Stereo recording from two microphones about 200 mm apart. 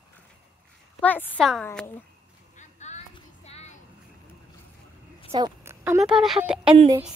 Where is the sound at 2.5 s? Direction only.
35° left (ahead or behind).